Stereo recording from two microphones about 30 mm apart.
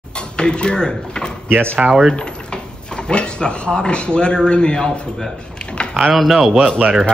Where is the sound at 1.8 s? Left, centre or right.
Right.